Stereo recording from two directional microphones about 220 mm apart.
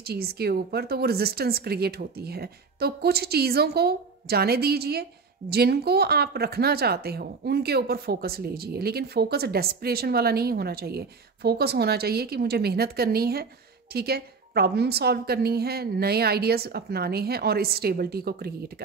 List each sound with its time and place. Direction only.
0.0 s speech: 45° right (ahead or behind)